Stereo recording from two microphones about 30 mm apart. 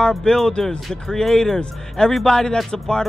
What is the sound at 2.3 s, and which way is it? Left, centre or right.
Speech, left.